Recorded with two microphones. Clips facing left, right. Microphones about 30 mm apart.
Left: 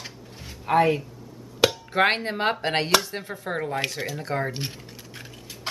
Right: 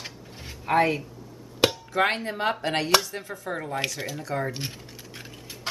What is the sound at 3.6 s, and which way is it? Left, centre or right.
Speech, centre.